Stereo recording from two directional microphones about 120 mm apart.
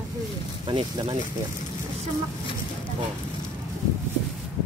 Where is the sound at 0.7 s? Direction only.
40° right (ahead or behind).